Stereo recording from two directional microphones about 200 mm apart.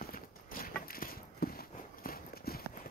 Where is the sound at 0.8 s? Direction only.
45° left (ahead or behind).